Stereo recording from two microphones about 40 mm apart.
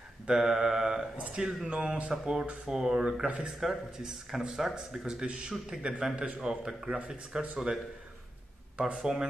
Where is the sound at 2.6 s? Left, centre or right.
Centre.